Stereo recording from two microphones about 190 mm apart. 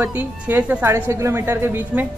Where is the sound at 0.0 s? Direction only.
10° right (ahead or behind).